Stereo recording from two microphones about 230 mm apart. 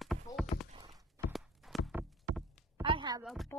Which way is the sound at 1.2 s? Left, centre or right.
Centre.